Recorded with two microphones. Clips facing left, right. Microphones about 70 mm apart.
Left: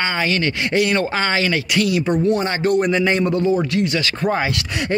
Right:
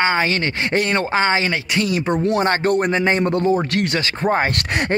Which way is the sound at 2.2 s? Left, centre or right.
Right.